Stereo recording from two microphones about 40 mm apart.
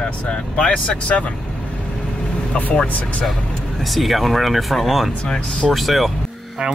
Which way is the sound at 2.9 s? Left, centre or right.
Left.